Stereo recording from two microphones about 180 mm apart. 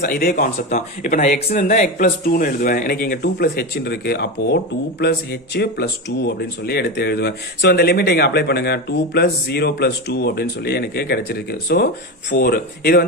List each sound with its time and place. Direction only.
0.0 s speech: 55° left (ahead or behind)